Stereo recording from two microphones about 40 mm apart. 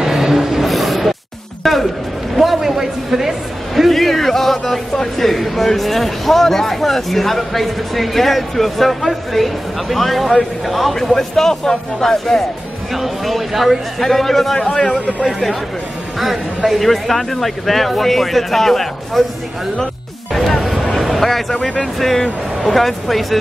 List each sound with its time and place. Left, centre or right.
0.0 s rub: centre
0.7 s a sound: centre
1.6 s music: centre
2.3 s a sound: centre
5.8 s speech: centre
12.9 s a man's voice: centre
16.2 s speech: centre
20.6 s vehicle: centre
21.5 s a man's voice: centre